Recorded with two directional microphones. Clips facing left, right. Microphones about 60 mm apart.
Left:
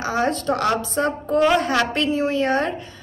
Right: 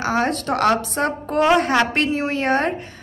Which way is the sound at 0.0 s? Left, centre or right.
Right.